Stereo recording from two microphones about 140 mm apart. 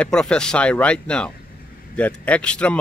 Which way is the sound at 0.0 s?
5° left (ahead or behind).